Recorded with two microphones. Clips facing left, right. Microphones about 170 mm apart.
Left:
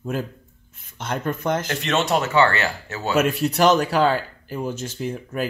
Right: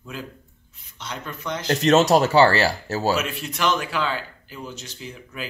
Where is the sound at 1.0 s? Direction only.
50° left (ahead or behind).